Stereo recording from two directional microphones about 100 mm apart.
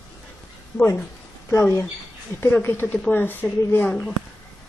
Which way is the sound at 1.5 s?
25° left (ahead or behind).